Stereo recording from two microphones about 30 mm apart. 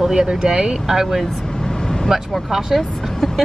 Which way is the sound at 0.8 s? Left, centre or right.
Centre.